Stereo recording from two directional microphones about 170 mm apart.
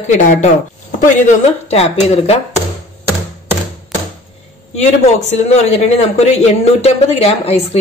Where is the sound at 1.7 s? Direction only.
40° left (ahead or behind).